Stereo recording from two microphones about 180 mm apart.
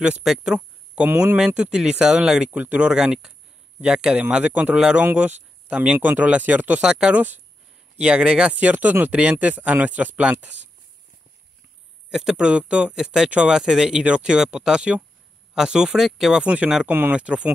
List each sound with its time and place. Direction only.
0.0 s a man's voice: 5° right (ahead or behind)
12.1 s speech: 5° right (ahead or behind)